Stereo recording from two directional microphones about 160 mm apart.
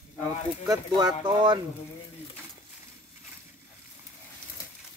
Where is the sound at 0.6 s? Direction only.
25° right (ahead or behind).